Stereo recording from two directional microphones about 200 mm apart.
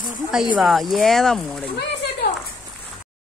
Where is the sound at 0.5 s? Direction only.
Centre (ahead or behind).